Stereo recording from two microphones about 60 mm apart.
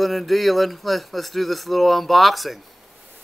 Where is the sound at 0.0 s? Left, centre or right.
Centre.